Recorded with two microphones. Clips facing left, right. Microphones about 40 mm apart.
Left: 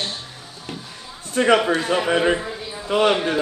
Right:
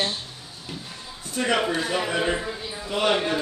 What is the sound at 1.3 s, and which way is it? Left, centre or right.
Speech, left.